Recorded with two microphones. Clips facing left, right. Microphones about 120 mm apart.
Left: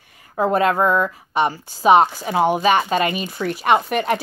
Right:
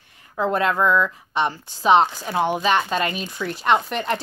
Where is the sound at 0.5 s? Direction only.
5° left (ahead or behind).